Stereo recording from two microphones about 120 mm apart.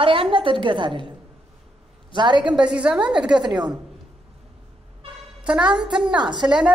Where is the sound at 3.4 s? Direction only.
40° right (ahead or behind).